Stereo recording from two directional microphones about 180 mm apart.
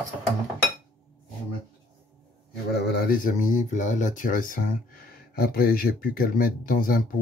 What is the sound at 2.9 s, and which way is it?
Speech, 50° left (ahead or behind).